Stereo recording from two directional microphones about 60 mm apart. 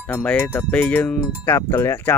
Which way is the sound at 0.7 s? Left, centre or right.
Left.